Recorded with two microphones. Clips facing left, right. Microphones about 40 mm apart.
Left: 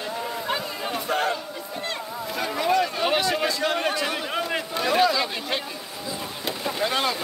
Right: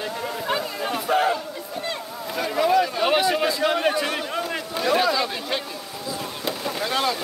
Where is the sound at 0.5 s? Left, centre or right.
Centre.